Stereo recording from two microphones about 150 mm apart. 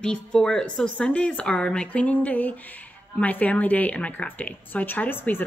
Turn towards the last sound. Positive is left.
turn(degrees=15)  # may be behind; listen again after turning